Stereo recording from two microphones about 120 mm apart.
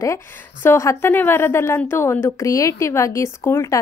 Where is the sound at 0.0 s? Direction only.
20° left (ahead or behind).